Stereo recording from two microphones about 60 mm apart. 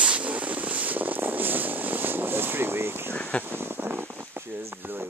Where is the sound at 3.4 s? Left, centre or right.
Right.